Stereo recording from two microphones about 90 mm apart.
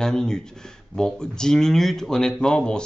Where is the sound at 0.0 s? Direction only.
5° left (ahead or behind).